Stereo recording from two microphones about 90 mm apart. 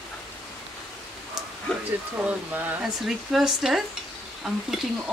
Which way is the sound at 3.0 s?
5° right (ahead or behind).